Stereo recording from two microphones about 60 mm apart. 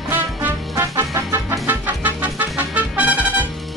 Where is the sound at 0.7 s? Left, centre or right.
Right.